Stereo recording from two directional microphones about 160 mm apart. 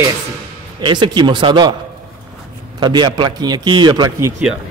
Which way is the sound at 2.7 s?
30° right (ahead or behind).